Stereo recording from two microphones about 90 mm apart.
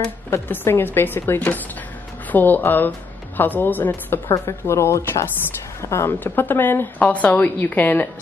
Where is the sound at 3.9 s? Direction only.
30° left (ahead or behind).